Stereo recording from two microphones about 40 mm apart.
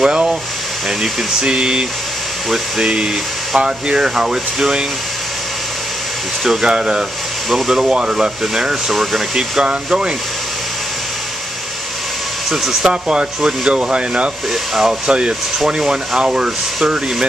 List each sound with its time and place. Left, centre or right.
0.0 s a sound: centre
1.4 s speech: right
6.4 s speech: centre
7.4 s speech: centre
8.9 s speech: centre
9.3 s speech: centre
12.4 s speech: centre
12.9 s speech: right
14.5 s speech: centre
15.0 s speech: right